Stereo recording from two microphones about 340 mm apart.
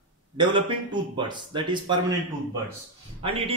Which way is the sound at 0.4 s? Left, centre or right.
Centre.